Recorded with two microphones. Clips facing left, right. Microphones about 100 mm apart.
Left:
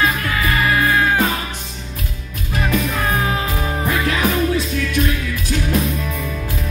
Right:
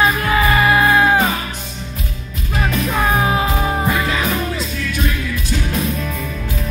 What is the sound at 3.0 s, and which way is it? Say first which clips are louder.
Music: right 4 dB; 20° right (ahead or behind).